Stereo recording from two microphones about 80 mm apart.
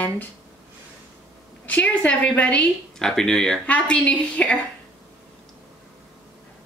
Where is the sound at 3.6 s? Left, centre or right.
Centre.